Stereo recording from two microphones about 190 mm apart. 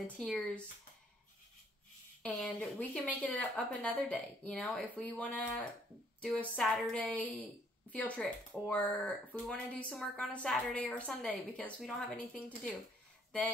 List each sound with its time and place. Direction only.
0.2 s speech: 5° left (ahead or behind)
2.2 s speech: 5° left (ahead or behind)